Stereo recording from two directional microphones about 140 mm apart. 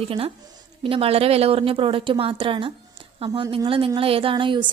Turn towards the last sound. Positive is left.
turn(degrees=-35)  # may be behind; listen again after turning